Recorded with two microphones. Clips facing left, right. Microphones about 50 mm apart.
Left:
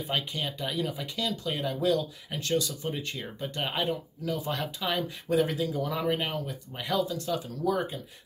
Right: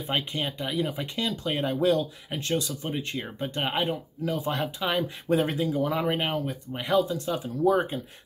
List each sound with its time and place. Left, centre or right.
0.1 s speech: right
5.3 s speech: right